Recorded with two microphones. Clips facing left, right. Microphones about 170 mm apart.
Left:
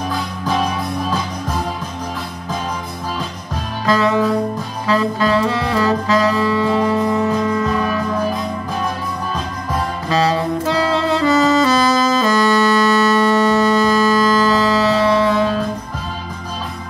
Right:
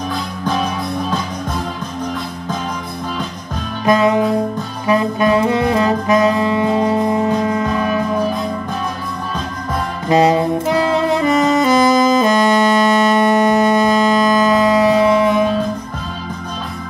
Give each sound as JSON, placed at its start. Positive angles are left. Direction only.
{"t": 3.8, "sound": "music", "side_deg": -20}
{"t": 4.8, "sound": "saxophone", "side_deg": -20}
{"t": 10.0, "sound": "saxophone", "side_deg": -20}